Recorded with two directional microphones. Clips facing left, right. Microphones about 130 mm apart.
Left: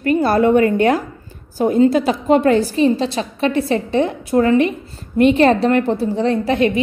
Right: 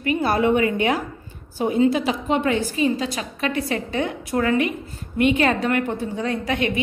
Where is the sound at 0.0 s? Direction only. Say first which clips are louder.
Left 6 dB; 40° left (ahead or behind).